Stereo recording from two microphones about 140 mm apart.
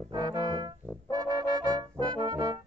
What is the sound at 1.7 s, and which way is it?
Trombone, 30° right (ahead or behind).